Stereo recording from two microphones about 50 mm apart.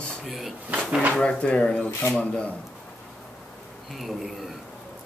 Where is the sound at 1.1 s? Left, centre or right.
Left.